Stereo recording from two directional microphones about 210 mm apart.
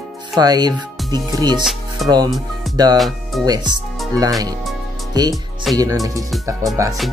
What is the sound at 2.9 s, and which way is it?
Speech, centre (ahead or behind).